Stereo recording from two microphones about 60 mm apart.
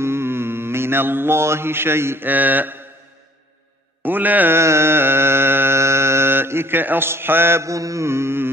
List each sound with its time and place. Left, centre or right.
0.0 s mantra: right
2.2 s mantra: right
4.0 s speech: right
4.6 s mantra: right
7.6 s carnatic music: right